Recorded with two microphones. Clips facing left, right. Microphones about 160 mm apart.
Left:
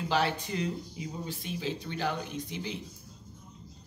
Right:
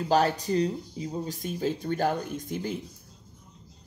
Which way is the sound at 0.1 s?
40° right (ahead or behind).